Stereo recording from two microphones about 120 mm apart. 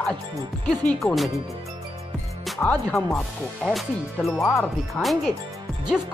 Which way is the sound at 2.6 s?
10° left (ahead or behind).